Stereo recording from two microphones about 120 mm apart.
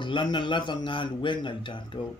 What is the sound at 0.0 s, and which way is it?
Speech, 40° left (ahead or behind).